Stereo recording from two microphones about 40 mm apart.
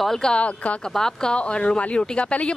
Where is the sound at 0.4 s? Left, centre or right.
Left.